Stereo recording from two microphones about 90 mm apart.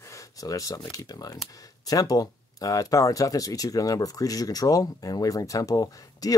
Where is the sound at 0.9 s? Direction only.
45° left (ahead or behind).